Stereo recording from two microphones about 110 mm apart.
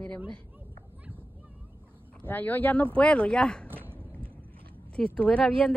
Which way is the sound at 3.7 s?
20° right (ahead or behind).